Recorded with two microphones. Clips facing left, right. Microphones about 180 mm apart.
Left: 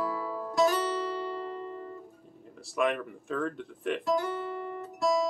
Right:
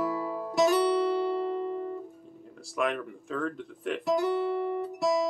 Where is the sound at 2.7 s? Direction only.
Centre (ahead or behind).